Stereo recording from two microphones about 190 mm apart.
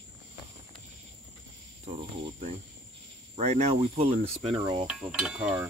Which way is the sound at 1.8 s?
35° right (ahead or behind).